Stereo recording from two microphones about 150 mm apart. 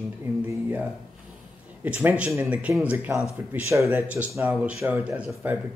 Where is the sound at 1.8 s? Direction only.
10° right (ahead or behind).